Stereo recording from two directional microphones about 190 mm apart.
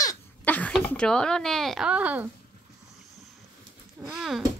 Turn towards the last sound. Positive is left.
turn(degrees=-5)  # may be behind; listen again after turning